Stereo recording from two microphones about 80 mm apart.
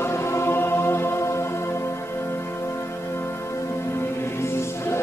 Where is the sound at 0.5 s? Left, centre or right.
Left.